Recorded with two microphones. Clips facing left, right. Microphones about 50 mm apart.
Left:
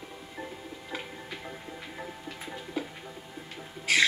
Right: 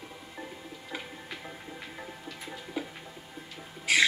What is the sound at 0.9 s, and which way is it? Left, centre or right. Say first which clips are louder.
Music: left 1 dB; centre.